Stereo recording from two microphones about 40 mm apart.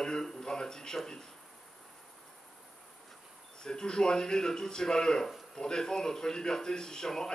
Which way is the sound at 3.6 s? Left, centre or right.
Centre.